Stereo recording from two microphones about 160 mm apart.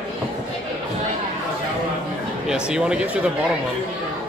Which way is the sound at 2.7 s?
5° right (ahead or behind).